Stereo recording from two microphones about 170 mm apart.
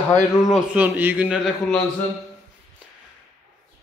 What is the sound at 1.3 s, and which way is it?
Speech, 5° left (ahead or behind).